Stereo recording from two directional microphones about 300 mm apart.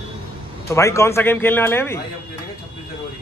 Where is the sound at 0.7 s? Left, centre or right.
Centre.